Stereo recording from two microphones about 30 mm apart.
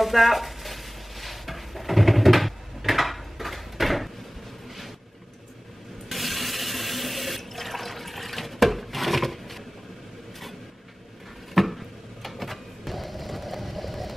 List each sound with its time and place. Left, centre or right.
0.0 s stir: centre
6.0 s water: centre
11.5 s a sound: centre